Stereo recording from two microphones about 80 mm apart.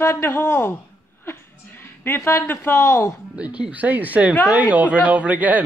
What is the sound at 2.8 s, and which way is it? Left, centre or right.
Speech, left.